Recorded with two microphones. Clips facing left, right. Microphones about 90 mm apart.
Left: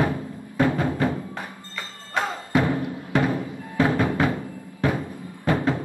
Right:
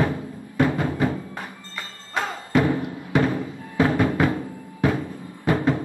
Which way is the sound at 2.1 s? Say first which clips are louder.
Right 1 dB; 15° left (ahead or behind).